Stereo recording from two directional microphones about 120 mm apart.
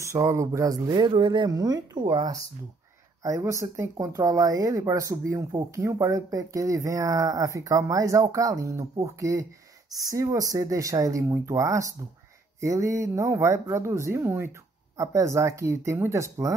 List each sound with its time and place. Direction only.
0.1 s speech: 25° right (ahead or behind)
3.2 s speech: 25° right (ahead or behind)